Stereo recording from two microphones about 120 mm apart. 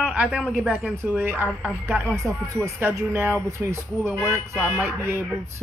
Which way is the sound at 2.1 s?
25° right (ahead or behind).